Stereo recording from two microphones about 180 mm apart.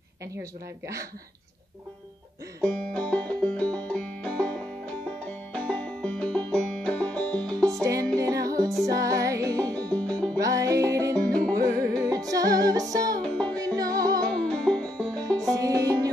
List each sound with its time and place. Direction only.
0.4 s speech: 15° right (ahead or behind)
2.6 s music: 5° left (ahead or behind)
7.6 s music: 20° right (ahead or behind)
9.8 s music: 5° left (ahead or behind)
10.4 s music: 20° right (ahead or behind)
11.2 s music: 5° left (ahead or behind)
11.6 s music: 20° right (ahead or behind)
13.2 s music: 5° left (ahead or behind)
13.7 s music: 20° right (ahead or behind)
14.4 s music: 5° left (ahead or behind)
15.1 s music: 20° right (ahead or behind)